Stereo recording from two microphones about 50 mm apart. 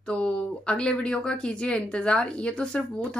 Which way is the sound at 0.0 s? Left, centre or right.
Centre.